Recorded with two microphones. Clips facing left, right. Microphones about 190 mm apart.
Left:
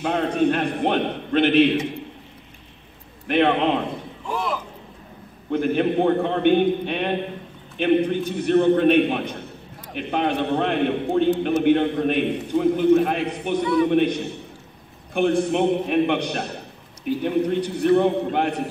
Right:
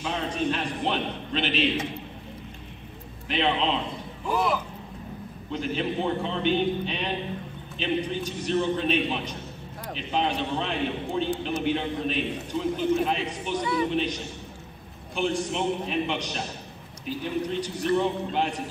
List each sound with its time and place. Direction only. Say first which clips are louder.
0.0 s a man's voice: left 8 dB; 60° left (ahead or behind)
3.3 s a man's voice: left 7 dB; 55° left (ahead or behind)
4.3 s speech: right 1 dB; 5° right (ahead or behind)
5.5 s a man's voice: left 8 dB; 55° left (ahead or behind)